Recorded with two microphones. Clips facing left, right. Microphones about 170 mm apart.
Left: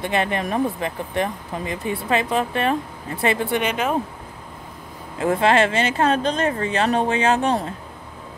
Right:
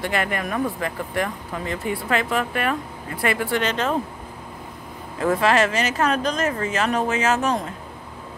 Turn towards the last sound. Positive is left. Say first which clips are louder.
# left 2 dB
turn(degrees=30)  # may be behind; listen again after turning